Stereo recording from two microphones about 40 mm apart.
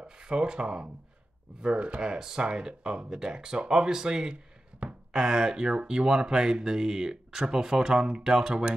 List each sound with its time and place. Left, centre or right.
0.0 s speech: right
2.1 s speech: centre